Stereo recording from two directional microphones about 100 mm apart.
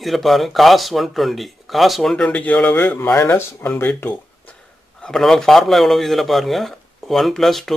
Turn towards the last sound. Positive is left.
turn(degrees=5)  # may be behind; listen again after turning